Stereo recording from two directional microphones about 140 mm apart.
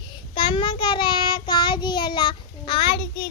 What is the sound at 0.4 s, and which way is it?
Child singing, 35° left (ahead or behind).